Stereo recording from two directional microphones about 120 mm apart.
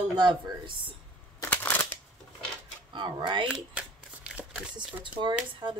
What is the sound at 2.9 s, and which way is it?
Speech, 40° right (ahead or behind).